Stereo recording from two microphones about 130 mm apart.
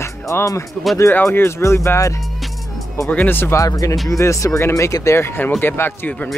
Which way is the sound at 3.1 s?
15° left (ahead or behind).